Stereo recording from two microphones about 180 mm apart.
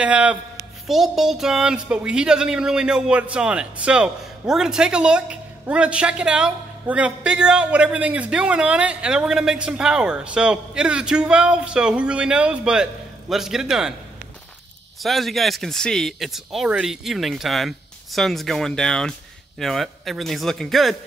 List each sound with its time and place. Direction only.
0.0 s a man's voice: 5° right (ahead or behind)
15.0 s a woman's voice: centre (ahead or behind)